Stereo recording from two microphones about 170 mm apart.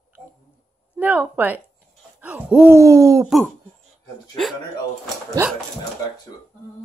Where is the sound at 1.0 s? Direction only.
10° right (ahead or behind).